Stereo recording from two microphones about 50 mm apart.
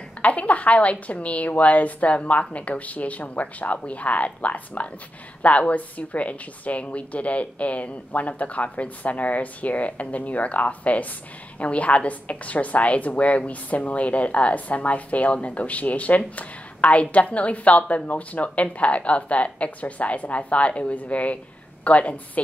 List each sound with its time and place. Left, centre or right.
0.2 s a woman's voice: left